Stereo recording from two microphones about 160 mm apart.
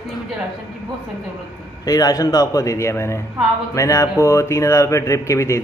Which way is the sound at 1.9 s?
25° left (ahead or behind).